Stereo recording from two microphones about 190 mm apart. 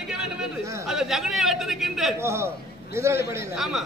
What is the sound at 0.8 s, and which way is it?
A man's voice, centre (ahead or behind).